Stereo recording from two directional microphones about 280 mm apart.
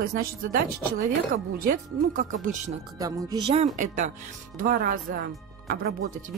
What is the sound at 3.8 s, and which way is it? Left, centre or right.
A woman's voice, right.